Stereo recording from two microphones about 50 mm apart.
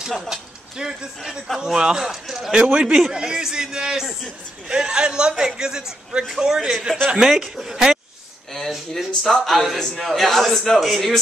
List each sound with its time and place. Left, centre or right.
0.3 s a man's voice: centre
2.6 s speech: right
2.9 s a man's voice: centre
8.5 s a man's voice: centre